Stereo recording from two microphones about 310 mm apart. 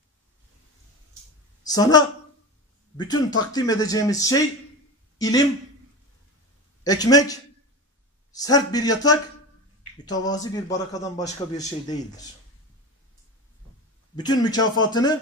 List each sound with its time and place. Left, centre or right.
1.7 s a man's voice: centre
6.8 s a man's voice: centre
8.4 s a man's voice: centre
14.1 s a man's voice: centre